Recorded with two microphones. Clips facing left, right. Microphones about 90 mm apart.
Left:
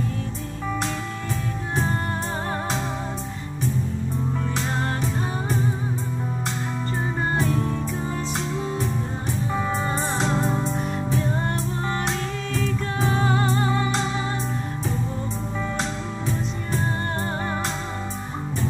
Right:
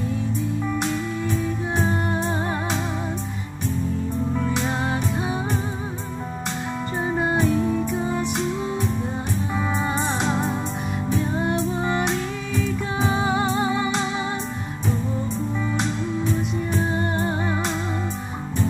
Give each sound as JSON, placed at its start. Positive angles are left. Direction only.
{"t": 7.4, "sound": "music", "side_deg": -10}
{"t": 10.2, "sound": "music", "side_deg": -15}